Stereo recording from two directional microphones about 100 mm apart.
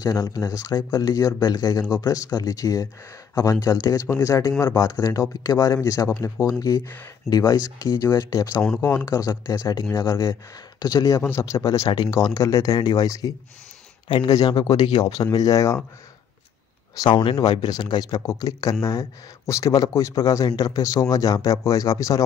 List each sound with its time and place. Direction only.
0.0 s speech: 40° left (ahead or behind)
10.8 s speech: 45° left (ahead or behind)
11.1 s speech: 25° left (ahead or behind)
11.9 s speech: 40° left (ahead or behind)
14.0 s speech: 55° left (ahead or behind); by 15.8 s 35° left (ahead or behind)
16.9 s speech: 45° left (ahead or behind)